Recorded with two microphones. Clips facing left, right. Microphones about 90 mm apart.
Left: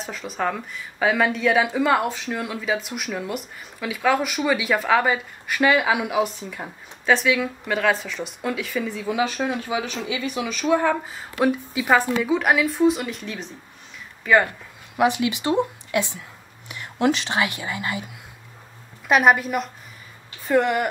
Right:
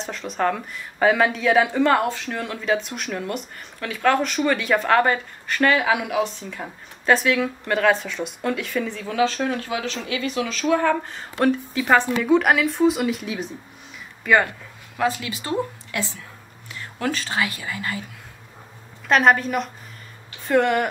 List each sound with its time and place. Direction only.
0.0 s speech: 5° left (ahead or behind)
7.1 s speech: centre (ahead or behind)
15.0 s speech: 20° left (ahead or behind)
19.0 s a woman's voice: 10° left (ahead or behind)